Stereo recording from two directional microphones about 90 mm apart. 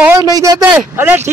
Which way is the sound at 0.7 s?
25° right (ahead or behind).